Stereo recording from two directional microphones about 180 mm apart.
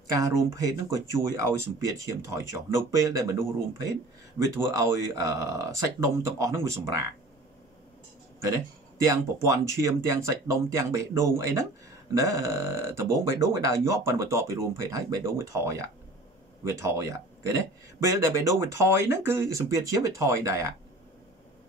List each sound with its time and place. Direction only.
0.1 s speech: 15° right (ahead or behind)
4.6 s speech: 15° right (ahead or behind)
8.4 s speech: 15° right (ahead or behind)